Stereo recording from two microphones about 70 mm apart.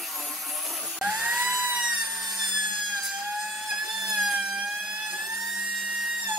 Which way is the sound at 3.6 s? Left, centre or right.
Centre.